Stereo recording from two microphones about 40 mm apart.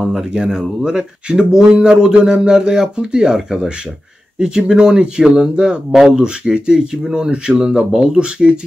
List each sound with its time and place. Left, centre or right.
0.0 s speech: right
7.2 s speech: right
7.6 s speech: centre